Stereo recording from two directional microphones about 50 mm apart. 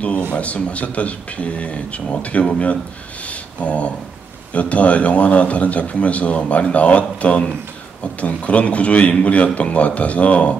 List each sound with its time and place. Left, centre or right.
0.3 s a man's voice: left
3.3 s a sound: left
4.6 s a man's voice: left